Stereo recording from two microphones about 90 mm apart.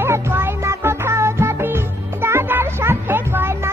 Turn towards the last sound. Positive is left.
turn(degrees=-25)  # may be behind; listen again after turning